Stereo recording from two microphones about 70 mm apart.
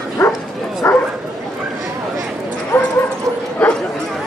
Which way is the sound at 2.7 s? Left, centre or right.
Left.